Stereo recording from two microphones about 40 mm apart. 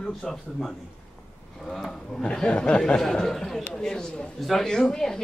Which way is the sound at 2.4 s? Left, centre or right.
Left.